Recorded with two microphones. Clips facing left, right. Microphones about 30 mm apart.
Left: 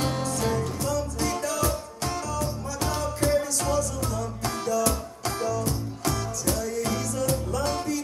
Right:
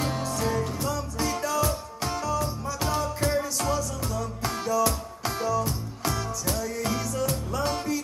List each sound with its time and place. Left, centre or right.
0.2 s music: centre